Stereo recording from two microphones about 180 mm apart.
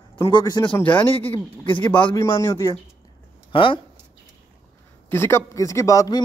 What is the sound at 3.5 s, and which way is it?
Speech, 30° left (ahead or behind).